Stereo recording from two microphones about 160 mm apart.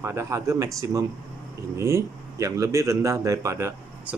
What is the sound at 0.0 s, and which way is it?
A man's voice, 15° right (ahead or behind).